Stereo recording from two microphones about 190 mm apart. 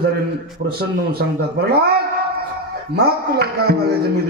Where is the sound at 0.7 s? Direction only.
55° right (ahead or behind).